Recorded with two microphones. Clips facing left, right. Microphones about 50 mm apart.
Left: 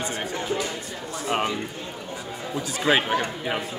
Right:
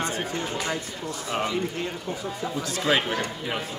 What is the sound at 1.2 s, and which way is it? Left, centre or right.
Speech, left.